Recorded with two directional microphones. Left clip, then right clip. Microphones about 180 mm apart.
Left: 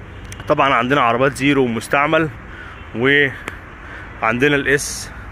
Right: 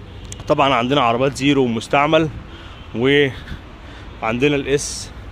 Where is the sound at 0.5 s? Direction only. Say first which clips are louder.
Left 1 dB; 25° right (ahead or behind).